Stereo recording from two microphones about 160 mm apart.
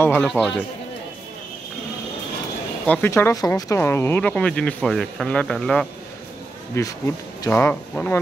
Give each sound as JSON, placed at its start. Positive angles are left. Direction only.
{"t": 0.0, "sound": "speech", "side_deg": 10}
{"t": 2.9, "sound": "speech", "side_deg": 15}
{"t": 6.7, "sound": "speech", "side_deg": 15}